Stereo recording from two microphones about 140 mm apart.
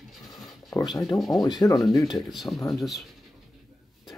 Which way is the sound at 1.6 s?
25° left (ahead or behind).